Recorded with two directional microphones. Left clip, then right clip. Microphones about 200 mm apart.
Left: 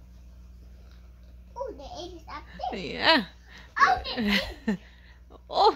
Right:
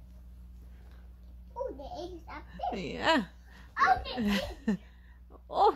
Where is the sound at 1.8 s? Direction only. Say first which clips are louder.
Left 1 dB; 15° right (ahead or behind).